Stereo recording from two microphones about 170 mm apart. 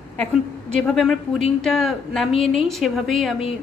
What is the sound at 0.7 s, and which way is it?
A woman's voice, 5° left (ahead or behind).